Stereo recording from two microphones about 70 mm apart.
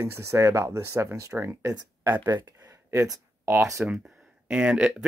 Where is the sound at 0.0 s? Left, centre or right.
Right.